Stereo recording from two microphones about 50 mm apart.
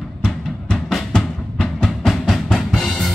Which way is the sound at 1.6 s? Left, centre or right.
Centre.